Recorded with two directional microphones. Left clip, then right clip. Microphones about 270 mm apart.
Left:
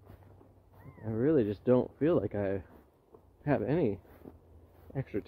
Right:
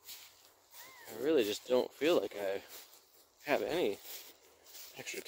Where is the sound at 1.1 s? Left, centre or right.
Centre.